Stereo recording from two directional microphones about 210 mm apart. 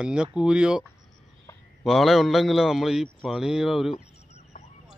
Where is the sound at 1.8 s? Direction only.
Centre (ahead or behind).